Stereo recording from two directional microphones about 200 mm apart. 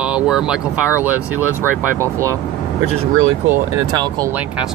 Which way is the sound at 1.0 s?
10° right (ahead or behind).